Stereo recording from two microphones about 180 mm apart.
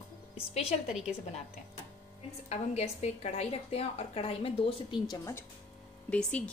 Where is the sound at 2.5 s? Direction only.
35° left (ahead or behind); by 5.4 s 20° left (ahead or behind).